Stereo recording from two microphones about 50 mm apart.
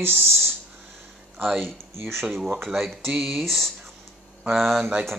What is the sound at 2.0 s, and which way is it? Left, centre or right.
Speech, right.